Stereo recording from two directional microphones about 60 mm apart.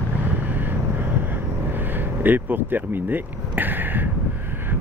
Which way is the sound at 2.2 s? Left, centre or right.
Right.